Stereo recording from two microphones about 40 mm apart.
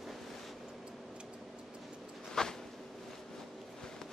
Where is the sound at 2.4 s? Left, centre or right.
Centre.